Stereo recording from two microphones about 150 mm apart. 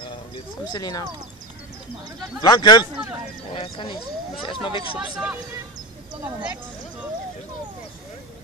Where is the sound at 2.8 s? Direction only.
10° right (ahead or behind).